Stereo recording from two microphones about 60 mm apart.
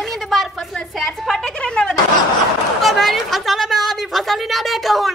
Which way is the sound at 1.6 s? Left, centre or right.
Centre.